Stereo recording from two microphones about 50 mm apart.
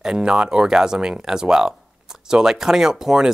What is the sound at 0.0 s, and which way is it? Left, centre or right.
Speech, centre.